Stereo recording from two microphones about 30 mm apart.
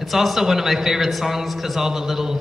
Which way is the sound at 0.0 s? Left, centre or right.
Centre.